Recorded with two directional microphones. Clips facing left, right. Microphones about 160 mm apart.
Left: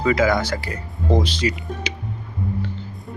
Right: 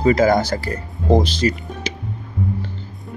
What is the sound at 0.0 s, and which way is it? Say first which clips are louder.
Speech: right 4 dB; 40° right (ahead or behind).